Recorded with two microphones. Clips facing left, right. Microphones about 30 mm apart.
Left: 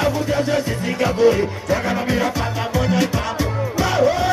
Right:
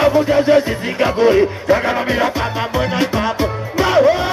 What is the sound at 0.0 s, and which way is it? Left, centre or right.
Music, right.